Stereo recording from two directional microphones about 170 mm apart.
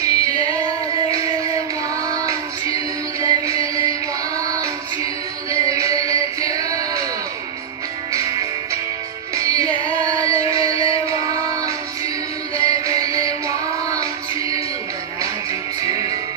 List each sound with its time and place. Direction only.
0.0 s female singing: 20° right (ahead or behind)
2.0 s child singing: 20° right (ahead or behind)
3.2 s music: 20° right (ahead or behind)
8.1 s music: 20° right (ahead or behind)
15.8 s music: 20° right (ahead or behind)